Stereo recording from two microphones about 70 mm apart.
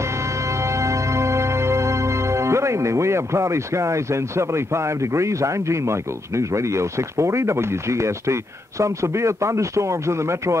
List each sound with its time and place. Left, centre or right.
0.6 s music: right